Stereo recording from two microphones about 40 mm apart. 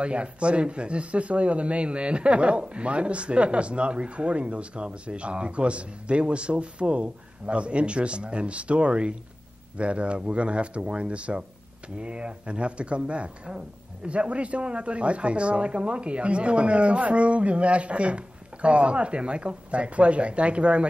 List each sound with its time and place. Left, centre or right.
0.0 s speech: right